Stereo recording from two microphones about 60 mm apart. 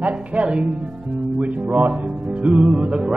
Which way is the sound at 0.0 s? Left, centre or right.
Right.